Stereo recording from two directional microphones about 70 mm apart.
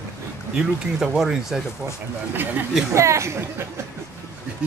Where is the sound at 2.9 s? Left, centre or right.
Right.